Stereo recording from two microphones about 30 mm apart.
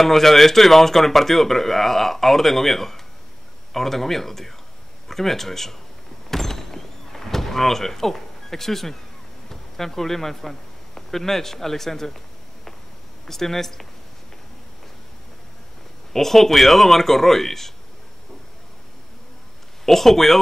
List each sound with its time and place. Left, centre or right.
0.0 s speech: centre
6.3 s door: centre
9.5 s a man's voice: centre
13.3 s speech: centre
16.1 s speech: centre
19.8 s speech: centre